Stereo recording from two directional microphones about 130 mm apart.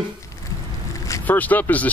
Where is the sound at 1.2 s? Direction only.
15° left (ahead or behind).